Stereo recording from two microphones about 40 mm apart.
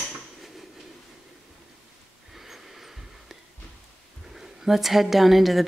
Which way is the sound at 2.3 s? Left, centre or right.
Centre.